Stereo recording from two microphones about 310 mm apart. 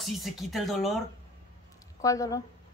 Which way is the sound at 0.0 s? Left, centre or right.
Centre.